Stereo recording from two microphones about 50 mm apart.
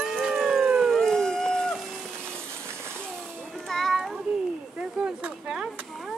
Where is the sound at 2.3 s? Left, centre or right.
Right.